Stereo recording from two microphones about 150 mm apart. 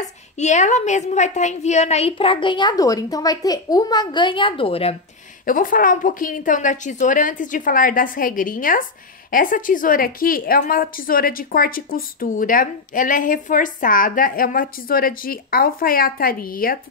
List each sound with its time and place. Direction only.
0.0 s a woman's voice: 50° left (ahead or behind)
5.4 s a woman's voice: 65° left (ahead or behind)